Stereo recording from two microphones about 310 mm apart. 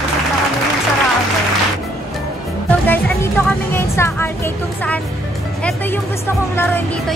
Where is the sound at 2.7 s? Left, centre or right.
Centre.